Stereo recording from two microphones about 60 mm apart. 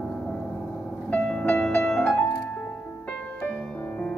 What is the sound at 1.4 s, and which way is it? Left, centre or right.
Music, left.